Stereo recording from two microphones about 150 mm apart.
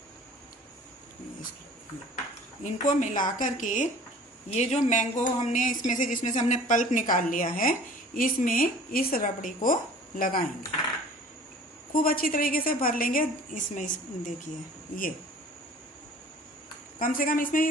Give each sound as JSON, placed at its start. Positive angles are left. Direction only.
{"t": 2.6, "sound": "speech", "side_deg": 55}
{"t": 11.9, "sound": "a woman's voice", "side_deg": 75}
{"t": 17.0, "sound": "a woman's voice", "side_deg": 70}